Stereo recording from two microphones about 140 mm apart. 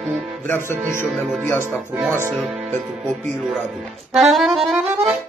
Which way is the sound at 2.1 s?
20° right (ahead or behind).